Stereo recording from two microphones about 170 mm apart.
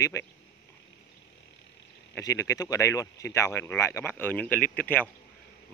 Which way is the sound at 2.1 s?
20° left (ahead or behind).